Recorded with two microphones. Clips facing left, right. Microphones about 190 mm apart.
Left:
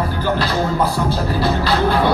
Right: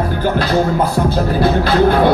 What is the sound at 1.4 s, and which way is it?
Speech, 50° right (ahead or behind).